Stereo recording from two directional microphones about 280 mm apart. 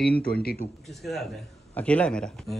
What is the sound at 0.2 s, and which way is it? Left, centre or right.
Speech, left.